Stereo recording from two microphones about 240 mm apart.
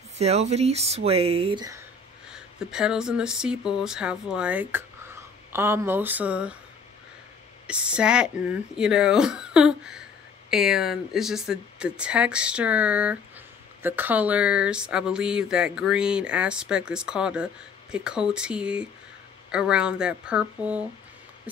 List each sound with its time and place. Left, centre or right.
0.2 s speech: right
2.2 s speech: centre
7.6 s speech: centre